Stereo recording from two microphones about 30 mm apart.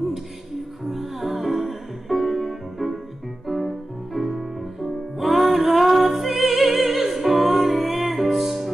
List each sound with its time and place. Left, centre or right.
0.8 s music: centre